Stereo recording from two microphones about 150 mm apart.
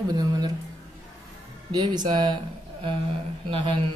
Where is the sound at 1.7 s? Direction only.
30° right (ahead or behind).